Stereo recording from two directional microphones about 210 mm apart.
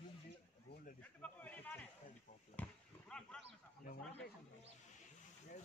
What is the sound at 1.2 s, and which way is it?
Speech, 5° left (ahead or behind).